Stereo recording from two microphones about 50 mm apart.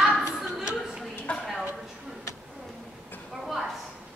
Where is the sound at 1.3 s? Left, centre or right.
Left.